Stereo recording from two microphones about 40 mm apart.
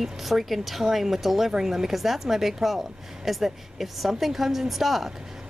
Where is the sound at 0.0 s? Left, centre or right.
Centre.